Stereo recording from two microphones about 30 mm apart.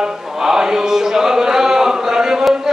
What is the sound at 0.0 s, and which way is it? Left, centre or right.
Chant, centre.